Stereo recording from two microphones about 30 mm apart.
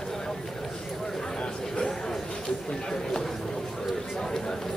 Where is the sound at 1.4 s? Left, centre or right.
Left.